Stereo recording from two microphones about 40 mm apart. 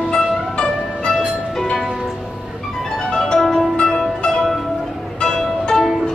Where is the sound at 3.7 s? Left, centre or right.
Centre.